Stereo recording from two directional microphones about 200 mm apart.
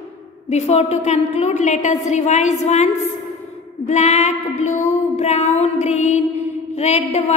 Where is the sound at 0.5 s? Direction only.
35° left (ahead or behind).